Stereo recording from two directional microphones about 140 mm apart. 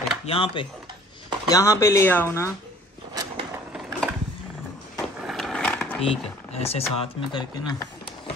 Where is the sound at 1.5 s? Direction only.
20° left (ahead or behind).